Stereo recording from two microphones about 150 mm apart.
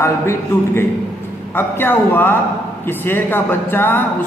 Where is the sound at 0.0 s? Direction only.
20° left (ahead or behind).